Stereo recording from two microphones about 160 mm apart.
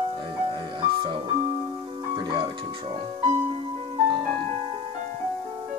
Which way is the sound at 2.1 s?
30° right (ahead or behind).